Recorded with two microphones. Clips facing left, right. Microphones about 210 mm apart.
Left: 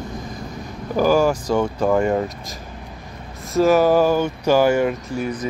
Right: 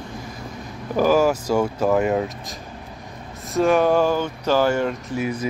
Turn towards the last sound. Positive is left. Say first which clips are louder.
# even
turn(degrees=-5)  # may be behind; listen again after turning